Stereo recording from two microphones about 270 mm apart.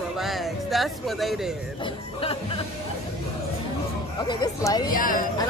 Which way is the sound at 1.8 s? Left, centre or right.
Left.